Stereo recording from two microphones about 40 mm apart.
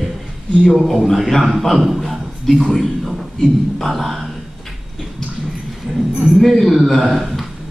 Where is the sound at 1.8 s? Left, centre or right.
Centre.